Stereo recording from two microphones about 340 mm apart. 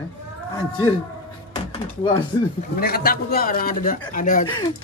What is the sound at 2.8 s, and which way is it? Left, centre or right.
Speech, left.